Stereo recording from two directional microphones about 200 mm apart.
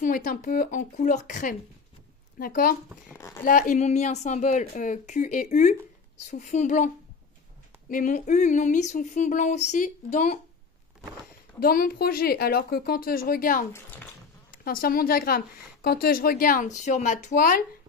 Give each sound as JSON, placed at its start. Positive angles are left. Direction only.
{"t": 0.0, "sound": "speech", "side_deg": 40}
{"t": 3.2, "sound": "speech", "side_deg": 15}
{"t": 3.4, "sound": "speech", "side_deg": 40}
{"t": 7.9, "sound": "speech", "side_deg": 40}
{"t": 11.6, "sound": "speech", "side_deg": 45}